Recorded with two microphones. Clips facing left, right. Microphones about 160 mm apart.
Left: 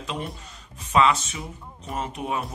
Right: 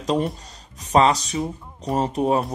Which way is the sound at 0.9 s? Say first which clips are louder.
Right 3 dB; 35° right (ahead or behind).